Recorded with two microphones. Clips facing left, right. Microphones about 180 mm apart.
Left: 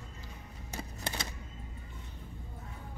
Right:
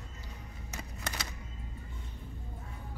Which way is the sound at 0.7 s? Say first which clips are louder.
Left 2 dB; 25° left (ahead or behind).